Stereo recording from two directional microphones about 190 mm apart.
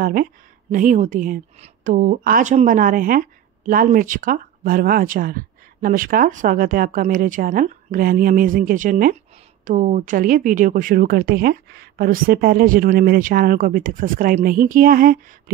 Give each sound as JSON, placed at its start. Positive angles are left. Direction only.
{"t": 0.0, "sound": "speech", "side_deg": -50}